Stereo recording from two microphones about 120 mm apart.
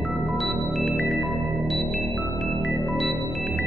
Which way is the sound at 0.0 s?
Centre (ahead or behind).